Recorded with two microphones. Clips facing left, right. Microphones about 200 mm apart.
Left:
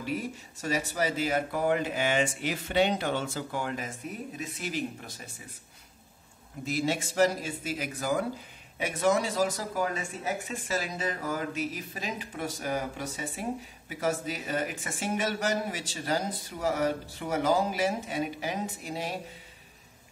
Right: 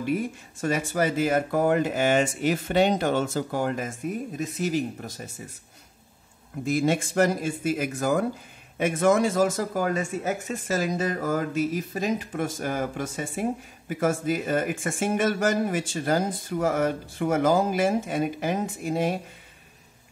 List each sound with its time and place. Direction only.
0.0 s speech: 55° right (ahead or behind)
6.6 s speech: 50° right (ahead or behind)